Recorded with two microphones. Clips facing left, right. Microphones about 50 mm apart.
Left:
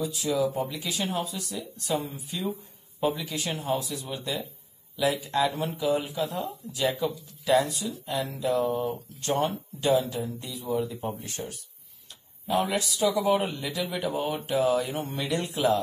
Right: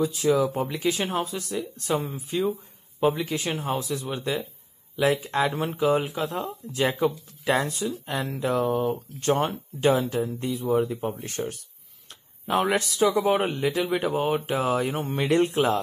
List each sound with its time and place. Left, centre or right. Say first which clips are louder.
0.0 s speech: right 5 dB; right
6.2 s speech: right 2 dB; right